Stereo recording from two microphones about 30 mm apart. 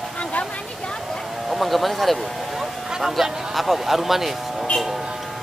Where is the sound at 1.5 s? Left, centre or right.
Centre.